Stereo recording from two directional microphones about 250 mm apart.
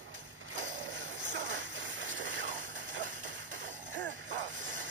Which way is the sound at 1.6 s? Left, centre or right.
Right.